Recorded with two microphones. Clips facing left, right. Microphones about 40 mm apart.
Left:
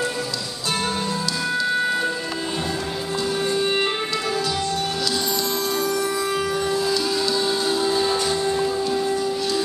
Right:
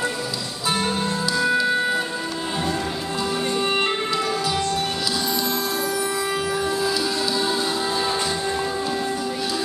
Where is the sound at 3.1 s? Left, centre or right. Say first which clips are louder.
Left 2 dB; centre.